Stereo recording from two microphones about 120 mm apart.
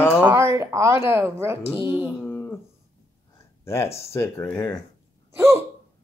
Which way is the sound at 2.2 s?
15° left (ahead or behind).